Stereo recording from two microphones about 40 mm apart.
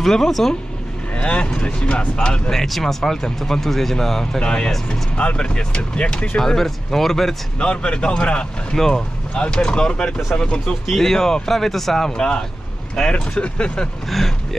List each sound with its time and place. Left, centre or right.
0.0 s speech: centre
1.1 s speech: left
2.5 s speech: centre
4.4 s speech: left
6.4 s speech: centre
7.5 s speech: left
10.6 s speech: centre
12.1 s speech: left
13.0 s speech: centre
13.4 s speech: left
14.0 s speech: centre